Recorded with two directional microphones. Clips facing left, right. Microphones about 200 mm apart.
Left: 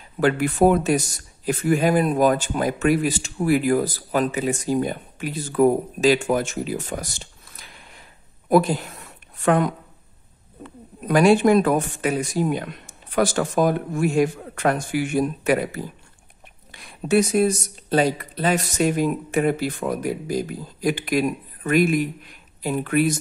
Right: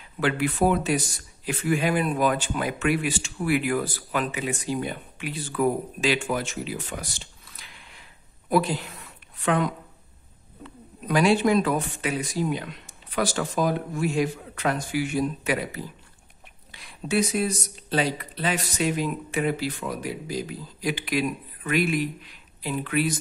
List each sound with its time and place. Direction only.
0.2 s a man's voice: 45° left (ahead or behind)